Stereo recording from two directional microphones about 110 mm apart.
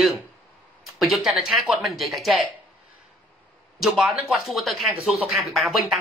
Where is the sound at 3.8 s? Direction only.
Centre (ahead or behind).